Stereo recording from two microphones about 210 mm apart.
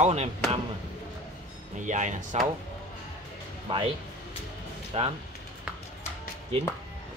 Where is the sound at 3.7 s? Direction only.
25° right (ahead or behind).